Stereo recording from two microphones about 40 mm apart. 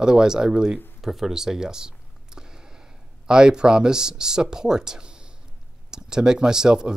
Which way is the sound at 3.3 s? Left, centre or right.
Centre.